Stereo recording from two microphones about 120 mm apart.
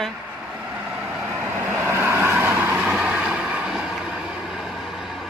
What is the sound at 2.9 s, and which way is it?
Boat, 5° right (ahead or behind).